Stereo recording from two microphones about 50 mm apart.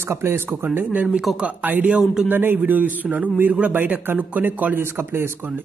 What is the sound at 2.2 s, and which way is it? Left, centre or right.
A man's voice, right.